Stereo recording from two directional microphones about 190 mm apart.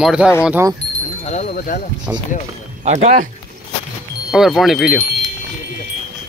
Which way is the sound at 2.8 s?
40° right (ahead or behind).